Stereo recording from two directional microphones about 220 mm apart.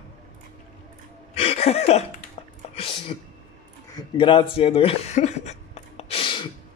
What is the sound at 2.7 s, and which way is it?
Speech, 25° left (ahead or behind).